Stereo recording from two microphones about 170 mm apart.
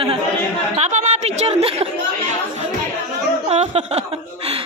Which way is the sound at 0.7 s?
45° right (ahead or behind).